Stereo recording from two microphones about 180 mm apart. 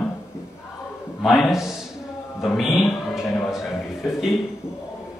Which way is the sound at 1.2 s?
Centre (ahead or behind).